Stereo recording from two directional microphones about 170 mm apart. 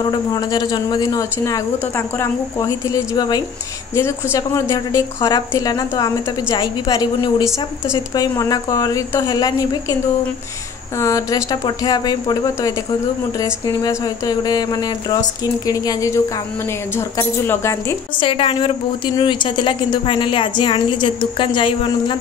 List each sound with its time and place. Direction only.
0.0 s speech: 25° left (ahead or behind)
11.0 s a woman's voice: 20° left (ahead or behind)
18.1 s a woman's voice: 30° left (ahead or behind)